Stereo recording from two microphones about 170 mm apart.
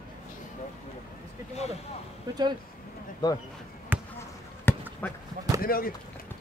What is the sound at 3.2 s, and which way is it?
Speech, 20° left (ahead or behind).